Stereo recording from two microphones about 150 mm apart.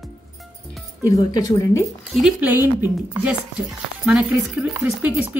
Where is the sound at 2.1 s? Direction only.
5° right (ahead or behind).